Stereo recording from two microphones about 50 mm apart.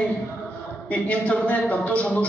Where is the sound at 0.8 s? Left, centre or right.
Left.